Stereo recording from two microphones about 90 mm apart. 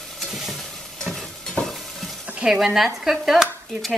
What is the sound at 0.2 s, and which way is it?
Stir, centre (ahead or behind).